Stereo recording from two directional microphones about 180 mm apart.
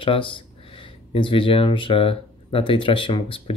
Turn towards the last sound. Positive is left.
turn(degrees=30)  # may be behind; listen again after turning